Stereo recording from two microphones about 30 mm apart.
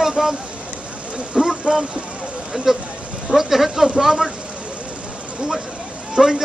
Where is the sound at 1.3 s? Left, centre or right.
Right.